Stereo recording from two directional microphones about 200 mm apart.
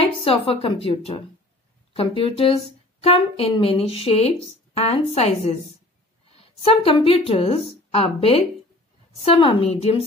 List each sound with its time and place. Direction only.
0.0 s a woman's voice: 25° left (ahead or behind)